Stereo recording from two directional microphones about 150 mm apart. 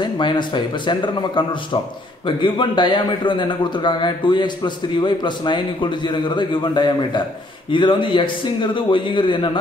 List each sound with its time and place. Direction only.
0.0 s a man's voice: 30° left (ahead or behind)